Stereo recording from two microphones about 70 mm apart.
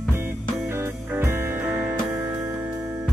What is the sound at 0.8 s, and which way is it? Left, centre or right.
Music, right.